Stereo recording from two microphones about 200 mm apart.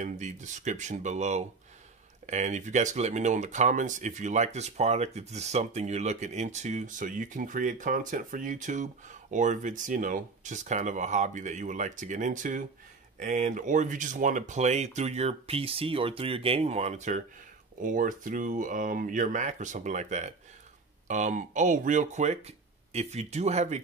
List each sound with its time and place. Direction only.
0.0 s speech: 35° right (ahead or behind)